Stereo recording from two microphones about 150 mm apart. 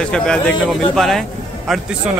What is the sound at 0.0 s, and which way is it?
Speech, 5° left (ahead or behind).